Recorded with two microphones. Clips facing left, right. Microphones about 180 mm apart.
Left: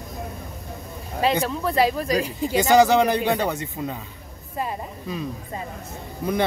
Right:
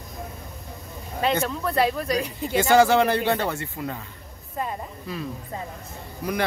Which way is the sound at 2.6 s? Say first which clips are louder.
Left 1 dB; 15° left (ahead or behind).